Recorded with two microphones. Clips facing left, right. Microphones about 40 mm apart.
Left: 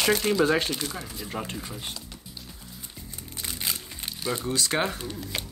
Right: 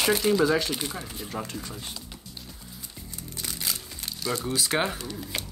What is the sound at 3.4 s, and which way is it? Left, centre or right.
Music, left.